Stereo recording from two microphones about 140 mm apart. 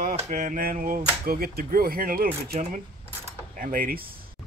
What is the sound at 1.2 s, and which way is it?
Speech, 90° right.